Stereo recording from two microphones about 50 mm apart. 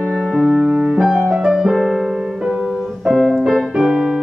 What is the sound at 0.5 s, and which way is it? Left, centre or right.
Music, centre.